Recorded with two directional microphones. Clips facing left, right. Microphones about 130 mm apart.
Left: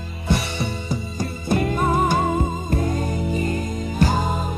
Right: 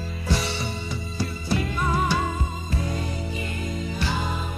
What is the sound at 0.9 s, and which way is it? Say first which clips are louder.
Music: left 4 dB; 50° left (ahead or behind).